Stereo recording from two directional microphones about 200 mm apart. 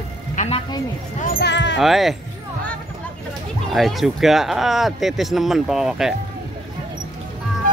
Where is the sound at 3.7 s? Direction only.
Centre (ahead or behind).